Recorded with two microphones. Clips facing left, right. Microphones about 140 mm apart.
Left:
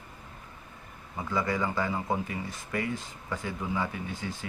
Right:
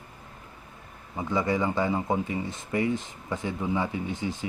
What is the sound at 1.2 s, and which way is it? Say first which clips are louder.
Speech: right 3 dB; 20° right (ahead or behind).